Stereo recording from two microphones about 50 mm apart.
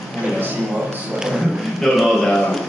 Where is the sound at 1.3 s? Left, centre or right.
Centre.